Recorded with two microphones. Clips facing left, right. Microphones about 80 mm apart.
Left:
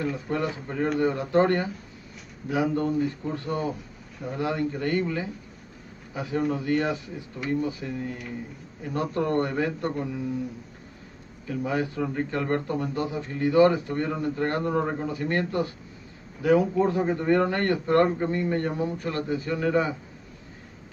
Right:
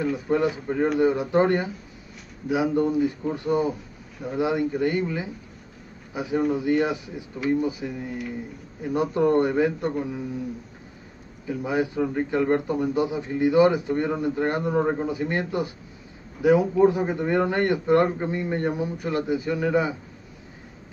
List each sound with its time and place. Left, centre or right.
0.1 s a man's voice: centre
11.4 s a man's voice: centre